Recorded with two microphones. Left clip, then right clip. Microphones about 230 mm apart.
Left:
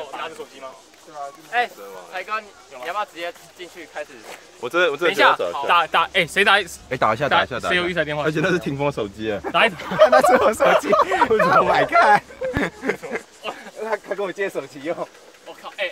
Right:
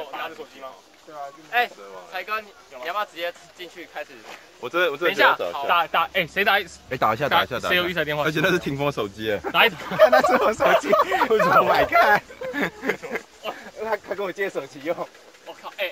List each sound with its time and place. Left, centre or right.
1.5 s speech: centre
4.6 s speech: left
5.0 s speech: left
6.9 s speech: centre
7.4 s speech: centre
10.3 s speech: centre
10.7 s speech: left
11.1 s speech: centre
13.1 s a sound: centre